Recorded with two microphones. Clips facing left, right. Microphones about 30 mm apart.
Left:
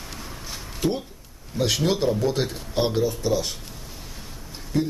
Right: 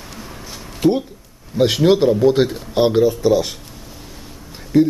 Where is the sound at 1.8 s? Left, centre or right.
Centre.